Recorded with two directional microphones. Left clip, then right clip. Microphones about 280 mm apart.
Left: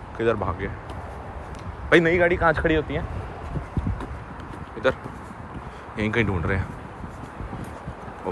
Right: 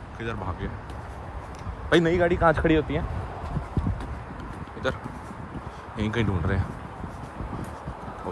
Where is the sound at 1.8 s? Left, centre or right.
Centre.